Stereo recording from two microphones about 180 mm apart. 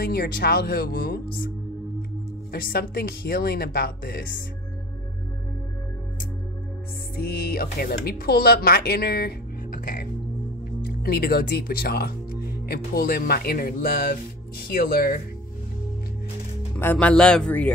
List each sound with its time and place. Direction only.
0.0 s speech: 60° left (ahead or behind)
2.5 s speech: 55° left (ahead or behind)
7.2 s speech: 55° left (ahead or behind)
11.0 s speech: 60° left (ahead or behind)
16.7 s speech: 10° left (ahead or behind)